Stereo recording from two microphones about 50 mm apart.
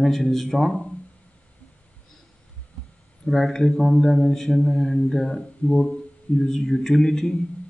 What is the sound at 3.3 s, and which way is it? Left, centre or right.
Speech, centre.